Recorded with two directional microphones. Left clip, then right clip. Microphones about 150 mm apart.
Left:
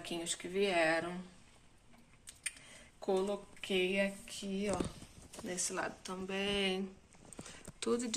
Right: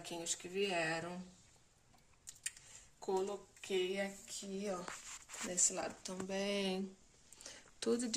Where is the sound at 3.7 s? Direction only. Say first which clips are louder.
Left 5 dB; 10° left (ahead or behind).